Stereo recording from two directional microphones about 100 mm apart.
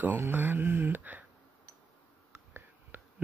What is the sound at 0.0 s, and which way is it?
Speech, 20° right (ahead or behind).